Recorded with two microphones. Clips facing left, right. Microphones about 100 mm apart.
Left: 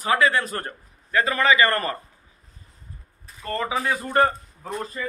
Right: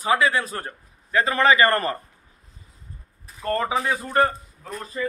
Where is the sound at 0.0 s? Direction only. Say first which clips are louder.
Even; 15° right (ahead or behind).